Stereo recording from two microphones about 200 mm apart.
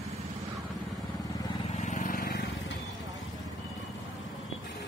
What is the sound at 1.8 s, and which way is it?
Vehicle, 40° left (ahead or behind).